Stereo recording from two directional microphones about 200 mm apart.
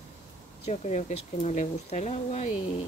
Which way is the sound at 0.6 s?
35° left (ahead or behind).